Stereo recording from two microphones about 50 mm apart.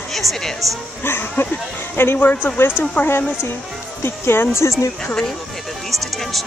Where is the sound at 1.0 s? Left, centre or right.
Left.